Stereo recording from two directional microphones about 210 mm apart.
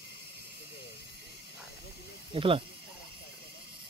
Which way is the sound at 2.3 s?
25° right (ahead or behind).